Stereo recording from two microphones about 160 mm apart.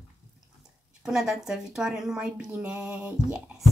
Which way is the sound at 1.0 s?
5° right (ahead or behind).